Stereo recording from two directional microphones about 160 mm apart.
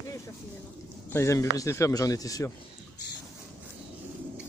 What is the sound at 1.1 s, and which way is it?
A man's voice, 15° left (ahead or behind).